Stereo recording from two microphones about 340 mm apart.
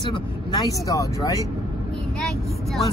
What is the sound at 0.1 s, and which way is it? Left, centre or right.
Speech, centre.